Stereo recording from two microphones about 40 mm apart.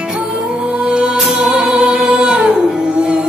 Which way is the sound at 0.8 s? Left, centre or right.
Right.